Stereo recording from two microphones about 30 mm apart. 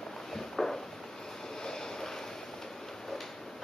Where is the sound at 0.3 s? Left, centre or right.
Centre.